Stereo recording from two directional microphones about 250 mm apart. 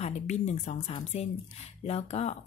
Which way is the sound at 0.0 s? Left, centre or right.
Left.